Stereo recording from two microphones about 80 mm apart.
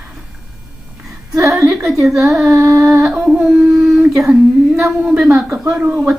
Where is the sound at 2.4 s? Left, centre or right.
Right.